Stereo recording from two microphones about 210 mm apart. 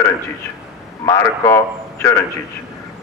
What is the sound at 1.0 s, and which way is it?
Speech, 15° left (ahead or behind).